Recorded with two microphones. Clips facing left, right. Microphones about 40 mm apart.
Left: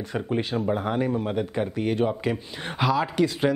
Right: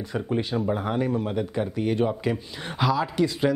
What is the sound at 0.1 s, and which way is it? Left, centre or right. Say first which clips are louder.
Speech: even; centre.